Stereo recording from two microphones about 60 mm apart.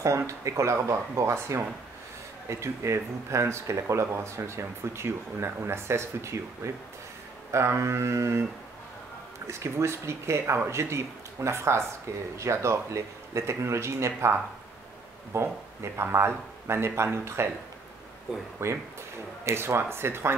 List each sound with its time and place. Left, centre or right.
0.3 s speech: right
9.5 s speech: right
18.3 s speech: centre
19.5 s speech: right